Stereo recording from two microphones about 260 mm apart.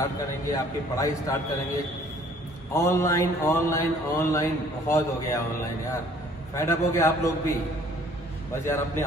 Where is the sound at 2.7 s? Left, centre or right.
Centre.